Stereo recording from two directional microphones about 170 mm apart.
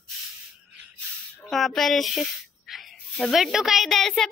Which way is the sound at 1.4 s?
Centre (ahead or behind).